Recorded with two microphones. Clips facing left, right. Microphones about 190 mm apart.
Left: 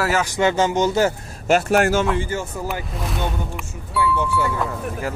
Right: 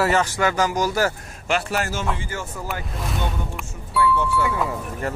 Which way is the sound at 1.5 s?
45° left (ahead or behind).